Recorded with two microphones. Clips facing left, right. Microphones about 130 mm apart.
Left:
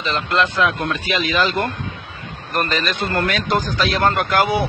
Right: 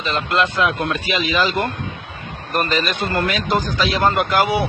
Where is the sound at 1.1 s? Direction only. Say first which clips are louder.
Even; centre (ahead or behind).